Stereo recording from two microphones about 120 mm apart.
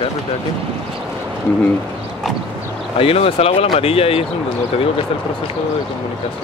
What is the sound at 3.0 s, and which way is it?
Speech, 55° left (ahead or behind).